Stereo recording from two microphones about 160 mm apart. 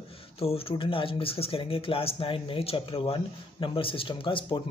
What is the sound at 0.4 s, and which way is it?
Speech, 35° left (ahead or behind).